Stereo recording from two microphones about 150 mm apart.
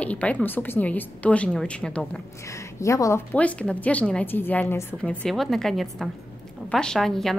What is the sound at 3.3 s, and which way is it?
A woman's voice, 10° left (ahead or behind).